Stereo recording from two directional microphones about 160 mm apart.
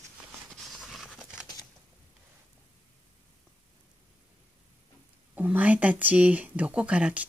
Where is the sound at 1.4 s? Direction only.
25° left (ahead or behind).